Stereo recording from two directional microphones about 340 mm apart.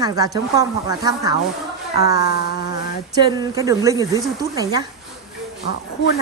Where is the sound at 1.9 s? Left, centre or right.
Left.